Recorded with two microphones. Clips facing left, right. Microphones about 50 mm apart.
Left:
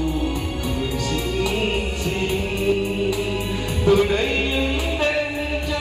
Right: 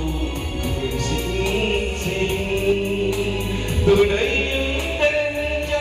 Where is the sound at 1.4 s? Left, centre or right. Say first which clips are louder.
Right 2 dB; right.